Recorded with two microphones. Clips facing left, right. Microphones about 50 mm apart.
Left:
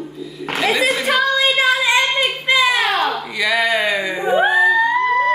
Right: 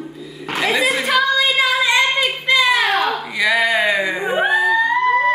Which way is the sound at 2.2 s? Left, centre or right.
Centre.